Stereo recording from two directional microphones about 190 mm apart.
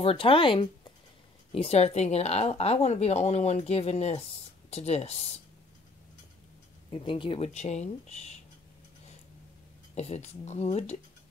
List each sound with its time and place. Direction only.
0.0 s speech: 30° left (ahead or behind)
6.9 s speech: 25° left (ahead or behind)
9.9 s speech: 35° left (ahead or behind)